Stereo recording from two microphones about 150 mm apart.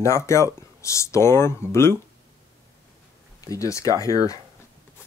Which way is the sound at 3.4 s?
20° left (ahead or behind).